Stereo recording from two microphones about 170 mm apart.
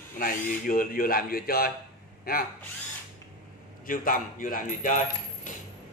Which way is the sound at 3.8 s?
55° left (ahead or behind).